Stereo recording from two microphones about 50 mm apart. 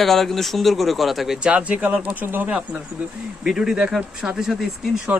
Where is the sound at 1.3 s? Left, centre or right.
Right.